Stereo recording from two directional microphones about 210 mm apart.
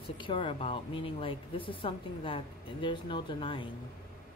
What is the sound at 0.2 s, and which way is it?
Speech, 25° left (ahead or behind).